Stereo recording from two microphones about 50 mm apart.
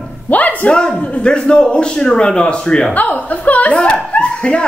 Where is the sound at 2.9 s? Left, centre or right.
Left.